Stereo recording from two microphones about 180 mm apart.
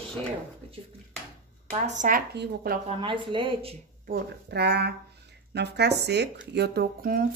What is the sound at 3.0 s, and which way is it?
Speech, 25° right (ahead or behind).